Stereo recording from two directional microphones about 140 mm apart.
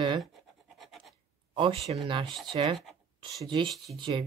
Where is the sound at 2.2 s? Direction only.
Centre (ahead or behind).